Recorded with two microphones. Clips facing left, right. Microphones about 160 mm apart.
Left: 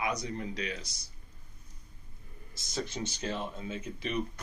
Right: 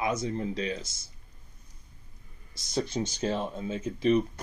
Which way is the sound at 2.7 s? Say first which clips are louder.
Right 6 dB; 35° right (ahead or behind).